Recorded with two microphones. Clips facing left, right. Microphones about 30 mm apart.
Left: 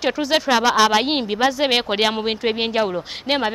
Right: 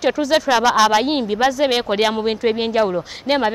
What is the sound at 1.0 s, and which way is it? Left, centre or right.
A woman's voice, left.